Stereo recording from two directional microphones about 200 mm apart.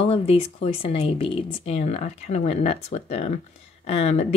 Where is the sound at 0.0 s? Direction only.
30° left (ahead or behind).